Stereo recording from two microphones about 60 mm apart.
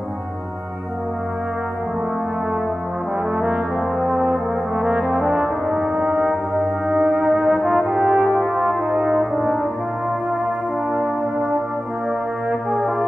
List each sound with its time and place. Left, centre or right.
4.3 s brass instrument: centre
5.9 s brass instrument: right
6.9 s music: right
7.2 s brass instrument: centre
8.2 s brass instrument: centre
8.5 s brass instrument: centre
9.1 s brass instrument: centre